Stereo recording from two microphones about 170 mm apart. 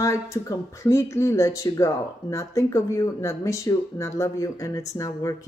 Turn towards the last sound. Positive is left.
turn(degrees=20)  # may be behind; listen again after turning